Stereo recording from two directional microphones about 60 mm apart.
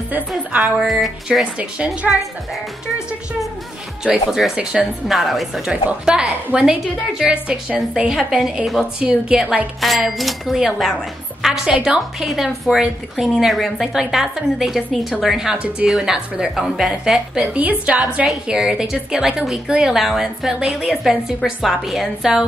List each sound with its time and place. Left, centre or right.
0.7 s a woman's voice: centre
1.4 s a woman's voice: centre
4.0 s a woman's voice: centre
5.7 s a woman's voice: centre
9.8 s a woman's voice: centre
17.6 s a woman's voice: right; by 22.4 s centre